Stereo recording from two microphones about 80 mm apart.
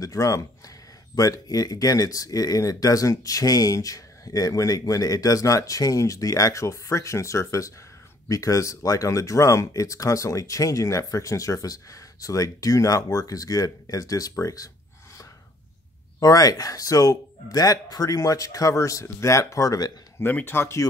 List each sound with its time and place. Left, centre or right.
0.0 s speech: left
16.2 s speech: left
20.2 s speech: left